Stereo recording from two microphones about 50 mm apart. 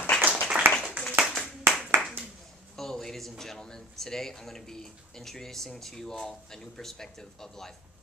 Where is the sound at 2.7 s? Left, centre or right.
Centre.